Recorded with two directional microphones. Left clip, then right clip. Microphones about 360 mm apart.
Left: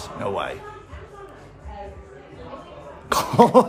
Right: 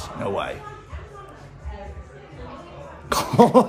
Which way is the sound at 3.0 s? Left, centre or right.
Centre.